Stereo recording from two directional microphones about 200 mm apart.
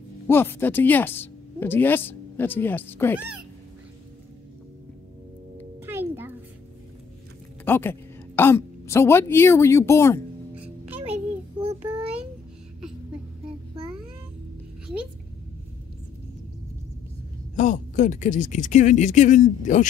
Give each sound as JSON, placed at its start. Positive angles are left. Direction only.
{"t": 0.3, "sound": "a woman's voice", "side_deg": 10}
{"t": 5.8, "sound": "music", "side_deg": -10}
{"t": 7.6, "sound": "a woman's voice", "side_deg": 10}
{"t": 10.5, "sound": "music", "side_deg": -5}
{"t": 17.6, "sound": "speech", "side_deg": 40}